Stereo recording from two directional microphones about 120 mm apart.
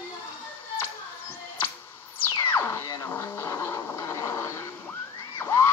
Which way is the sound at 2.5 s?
20° left (ahead or behind).